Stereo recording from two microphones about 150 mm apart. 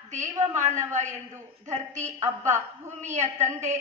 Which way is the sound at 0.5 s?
50° right (ahead or behind).